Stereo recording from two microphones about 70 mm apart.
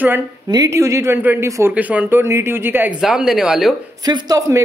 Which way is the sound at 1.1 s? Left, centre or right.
Right.